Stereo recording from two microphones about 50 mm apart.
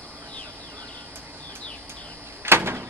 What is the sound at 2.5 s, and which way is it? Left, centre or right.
Door, right.